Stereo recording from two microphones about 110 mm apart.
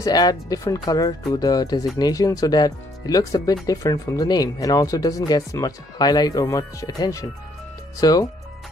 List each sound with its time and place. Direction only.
0.0 s speech: 35° left (ahead or behind)